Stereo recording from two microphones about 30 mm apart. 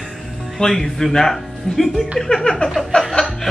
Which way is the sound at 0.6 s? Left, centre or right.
Centre.